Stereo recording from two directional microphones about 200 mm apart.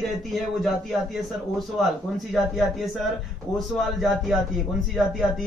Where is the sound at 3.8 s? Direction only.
Centre (ahead or behind).